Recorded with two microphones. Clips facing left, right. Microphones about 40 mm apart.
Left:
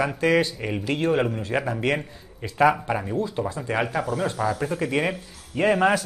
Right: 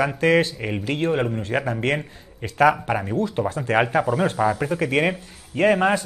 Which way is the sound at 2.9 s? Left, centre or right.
Centre.